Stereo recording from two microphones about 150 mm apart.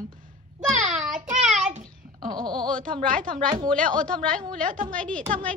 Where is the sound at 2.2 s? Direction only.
30° right (ahead or behind).